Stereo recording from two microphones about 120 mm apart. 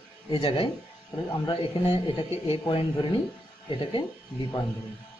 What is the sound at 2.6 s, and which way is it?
A man's voice, 45° left (ahead or behind).